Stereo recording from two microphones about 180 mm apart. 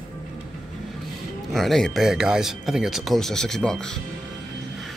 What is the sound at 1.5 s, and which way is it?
Speech, centre (ahead or behind).